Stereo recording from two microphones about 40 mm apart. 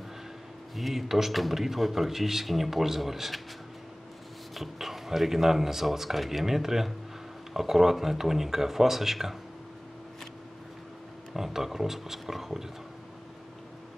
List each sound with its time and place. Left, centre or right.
0.7 s a man's voice: centre
4.6 s speech: centre
11.3 s speech: centre